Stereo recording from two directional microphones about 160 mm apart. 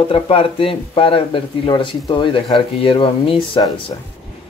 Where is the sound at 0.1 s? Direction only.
35° left (ahead or behind).